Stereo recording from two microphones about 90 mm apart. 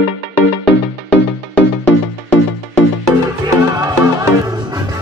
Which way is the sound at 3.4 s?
45° right (ahead or behind).